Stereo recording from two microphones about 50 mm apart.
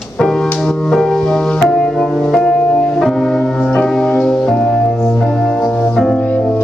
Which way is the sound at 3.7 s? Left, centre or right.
Centre.